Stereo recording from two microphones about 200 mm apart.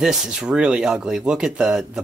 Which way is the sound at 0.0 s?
Centre (ahead or behind).